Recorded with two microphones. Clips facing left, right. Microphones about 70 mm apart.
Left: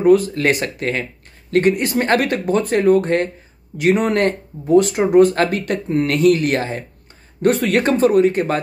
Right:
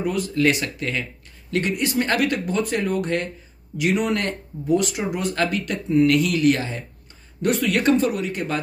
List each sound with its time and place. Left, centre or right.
0.0 s speech: left